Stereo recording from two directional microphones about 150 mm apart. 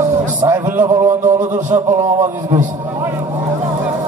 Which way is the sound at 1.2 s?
55° right (ahead or behind).